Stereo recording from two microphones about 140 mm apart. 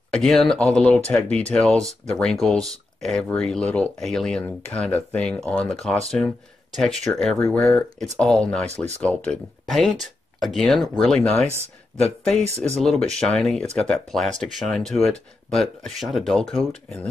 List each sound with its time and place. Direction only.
0.1 s speech: centre (ahead or behind)
12.4 s speech: 50° right (ahead or behind)
12.8 s speech: 5° left (ahead or behind)